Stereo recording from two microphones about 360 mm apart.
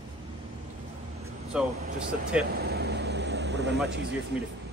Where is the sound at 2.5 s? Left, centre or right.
Right.